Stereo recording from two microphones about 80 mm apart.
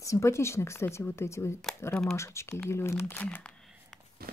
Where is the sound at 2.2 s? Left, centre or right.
Left.